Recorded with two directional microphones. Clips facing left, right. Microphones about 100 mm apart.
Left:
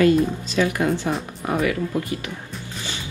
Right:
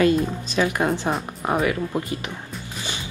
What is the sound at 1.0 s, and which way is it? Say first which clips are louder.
Speech: right 1 dB; 30° right (ahead or behind).